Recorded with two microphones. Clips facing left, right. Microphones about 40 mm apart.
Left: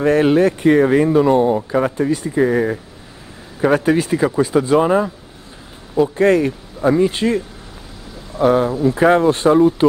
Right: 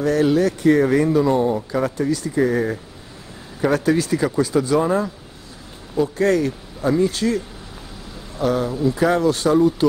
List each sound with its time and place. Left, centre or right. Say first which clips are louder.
0.0 s speech: left 4 dB; left
6.1 s speech: left 4 dB; left